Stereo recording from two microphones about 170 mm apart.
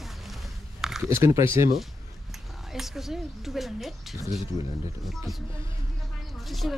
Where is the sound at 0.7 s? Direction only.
Centre (ahead or behind).